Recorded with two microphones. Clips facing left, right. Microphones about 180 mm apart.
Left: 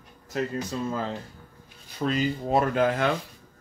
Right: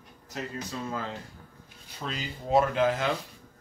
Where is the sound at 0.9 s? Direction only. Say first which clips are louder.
Left 4 dB; 30° left (ahead or behind).